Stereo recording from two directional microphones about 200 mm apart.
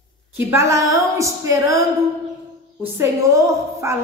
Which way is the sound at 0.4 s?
10° right (ahead or behind).